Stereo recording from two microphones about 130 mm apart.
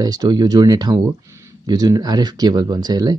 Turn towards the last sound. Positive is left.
turn(degrees=-30)  # may be behind; listen again after turning